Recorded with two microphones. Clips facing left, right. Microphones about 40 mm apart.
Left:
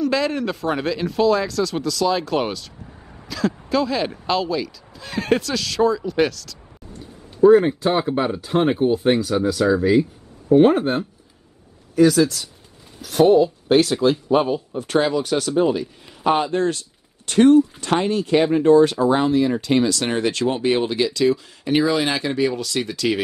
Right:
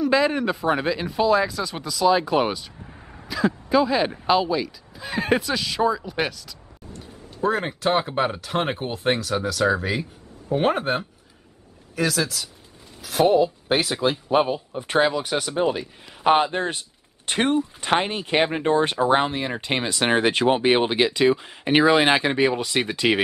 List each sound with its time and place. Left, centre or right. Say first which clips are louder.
0.0 s speech: right 1 dB; centre
7.4 s speech: left 11 dB; right
8.3 s speech: left 6 dB; centre
10.6 s speech: left 6 dB; centre
11.9 s speech: left 9 dB; centre; by 23.2 s right